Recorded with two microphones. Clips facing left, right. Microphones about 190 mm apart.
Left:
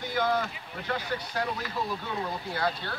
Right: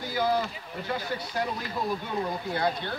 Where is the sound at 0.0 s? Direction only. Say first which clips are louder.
Right 1 dB; 5° right (ahead or behind).